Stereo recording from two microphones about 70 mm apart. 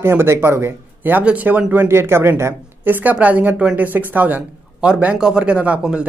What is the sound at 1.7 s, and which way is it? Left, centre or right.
Speech, right.